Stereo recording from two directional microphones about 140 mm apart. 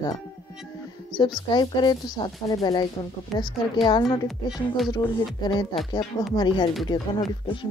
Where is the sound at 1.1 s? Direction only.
35° left (ahead or behind).